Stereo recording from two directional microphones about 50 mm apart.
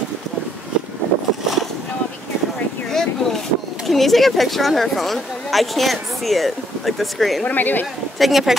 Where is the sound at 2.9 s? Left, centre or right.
Centre.